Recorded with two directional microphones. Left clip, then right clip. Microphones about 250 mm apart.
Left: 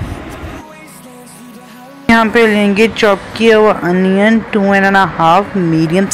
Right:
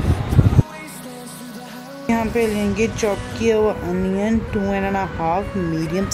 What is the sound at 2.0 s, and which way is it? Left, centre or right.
Speech, centre.